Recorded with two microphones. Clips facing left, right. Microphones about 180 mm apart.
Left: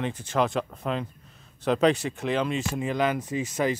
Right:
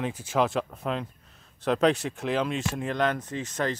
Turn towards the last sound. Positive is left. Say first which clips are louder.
# left 3 dB
turn(degrees=10)  # may be behind; listen again after turning